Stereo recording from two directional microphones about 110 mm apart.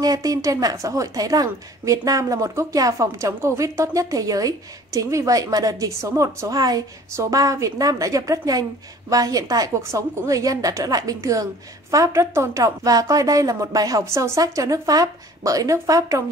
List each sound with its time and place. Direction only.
0.0 s a woman's voice: 35° right (ahead or behind)